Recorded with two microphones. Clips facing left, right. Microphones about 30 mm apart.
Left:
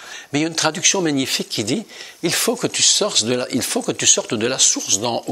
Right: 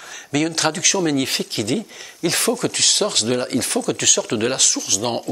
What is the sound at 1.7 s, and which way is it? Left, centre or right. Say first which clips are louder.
Speech: even; left.